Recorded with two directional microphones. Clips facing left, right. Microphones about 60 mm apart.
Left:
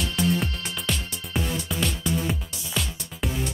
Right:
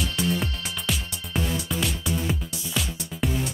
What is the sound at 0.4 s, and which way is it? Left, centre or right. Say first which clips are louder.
Music: left 1 dB; centre.